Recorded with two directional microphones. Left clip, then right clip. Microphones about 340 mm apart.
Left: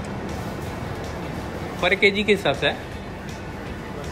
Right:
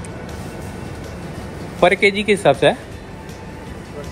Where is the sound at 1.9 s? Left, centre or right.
Centre.